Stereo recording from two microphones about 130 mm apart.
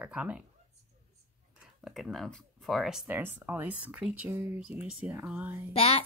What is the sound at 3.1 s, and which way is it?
Speech, 15° right (ahead or behind).